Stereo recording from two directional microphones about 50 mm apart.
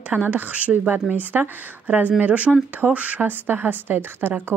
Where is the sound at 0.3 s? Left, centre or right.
Right.